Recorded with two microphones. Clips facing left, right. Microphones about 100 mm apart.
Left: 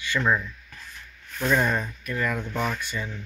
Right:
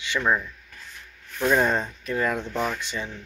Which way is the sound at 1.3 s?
15° right (ahead or behind).